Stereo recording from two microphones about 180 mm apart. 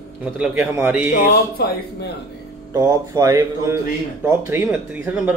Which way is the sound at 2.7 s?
20° right (ahead or behind).